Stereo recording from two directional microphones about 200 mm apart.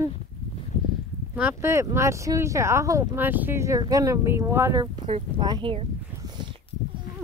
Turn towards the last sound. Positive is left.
turn(degrees=-20)  # may be behind; listen again after turning